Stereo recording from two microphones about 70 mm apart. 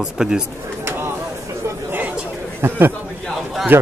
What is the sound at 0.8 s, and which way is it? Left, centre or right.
Bird, right.